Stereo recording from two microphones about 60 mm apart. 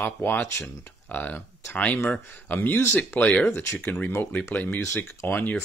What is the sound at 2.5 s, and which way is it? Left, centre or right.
Speech, left.